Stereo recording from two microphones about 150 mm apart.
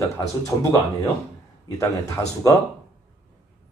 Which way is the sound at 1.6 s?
20° left (ahead or behind).